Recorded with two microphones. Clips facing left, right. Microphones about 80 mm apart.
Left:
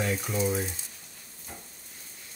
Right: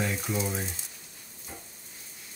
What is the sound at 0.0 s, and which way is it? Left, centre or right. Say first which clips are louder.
Speech: left 2 dB; centre.